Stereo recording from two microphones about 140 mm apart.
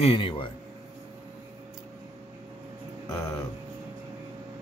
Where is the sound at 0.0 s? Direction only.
40° left (ahead or behind).